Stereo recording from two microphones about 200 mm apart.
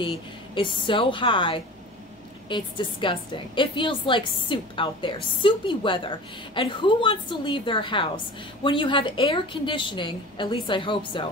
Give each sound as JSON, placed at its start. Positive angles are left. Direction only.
{"t": 0.0, "sound": "a woman's voice", "side_deg": 25}